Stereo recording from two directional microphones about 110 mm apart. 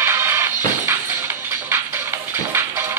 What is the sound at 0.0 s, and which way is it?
Music, 20° right (ahead or behind).